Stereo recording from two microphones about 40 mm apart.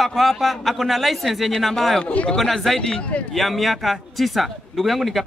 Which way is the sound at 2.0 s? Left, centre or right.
Left.